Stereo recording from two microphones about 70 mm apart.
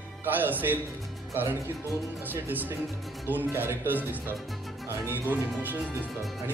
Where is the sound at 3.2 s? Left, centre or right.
Right.